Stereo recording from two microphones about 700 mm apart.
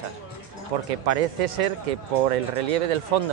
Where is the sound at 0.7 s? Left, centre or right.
Right.